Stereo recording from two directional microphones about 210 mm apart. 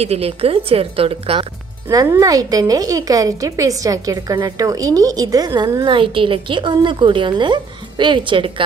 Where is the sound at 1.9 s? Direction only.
15° right (ahead or behind).